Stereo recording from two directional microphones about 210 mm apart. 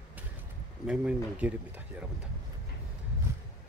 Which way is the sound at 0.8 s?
5° right (ahead or behind).